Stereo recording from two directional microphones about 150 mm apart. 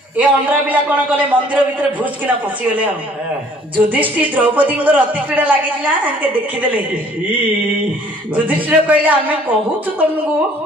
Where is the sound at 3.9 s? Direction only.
10° right (ahead or behind).